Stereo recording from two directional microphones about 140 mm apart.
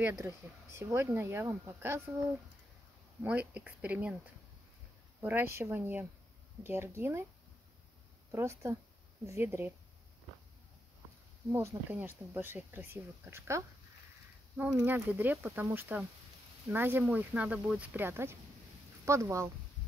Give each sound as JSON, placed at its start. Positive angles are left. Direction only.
{"t": 0.1, "sound": "speech", "side_deg": -20}
{"t": 3.2, "sound": "speech", "side_deg": -10}
{"t": 5.2, "sound": "speech", "side_deg": -15}
{"t": 8.3, "sound": "speech", "side_deg": -20}
{"t": 11.5, "sound": "speech", "side_deg": -15}
{"t": 14.8, "sound": "speech", "side_deg": -15}